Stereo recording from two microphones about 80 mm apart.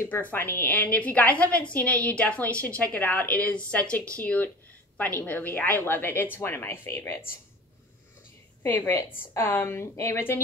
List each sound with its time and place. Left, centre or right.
0.1 s a woman's voice: left
8.6 s speech: left